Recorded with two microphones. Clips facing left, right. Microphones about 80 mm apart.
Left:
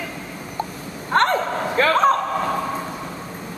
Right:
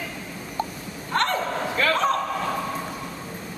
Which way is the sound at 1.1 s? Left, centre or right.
Left.